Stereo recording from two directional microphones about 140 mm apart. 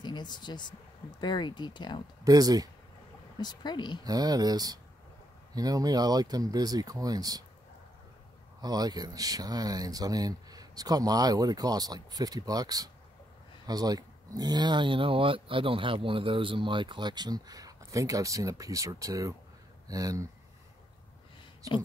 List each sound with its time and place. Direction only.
0.0 s speech: 30° left (ahead or behind)
2.2 s speech: 25° right (ahead or behind)
3.3 s speech: 30° left (ahead or behind)
4.0 s speech: 25° right (ahead or behind)
8.5 s speech: 30° right (ahead or behind)